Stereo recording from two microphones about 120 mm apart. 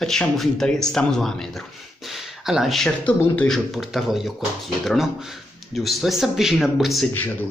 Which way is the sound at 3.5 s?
Centre (ahead or behind).